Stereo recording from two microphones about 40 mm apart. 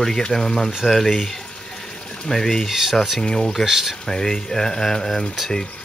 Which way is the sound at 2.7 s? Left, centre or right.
Centre.